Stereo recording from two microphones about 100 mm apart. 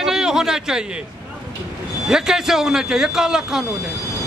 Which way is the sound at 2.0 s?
5° right (ahead or behind).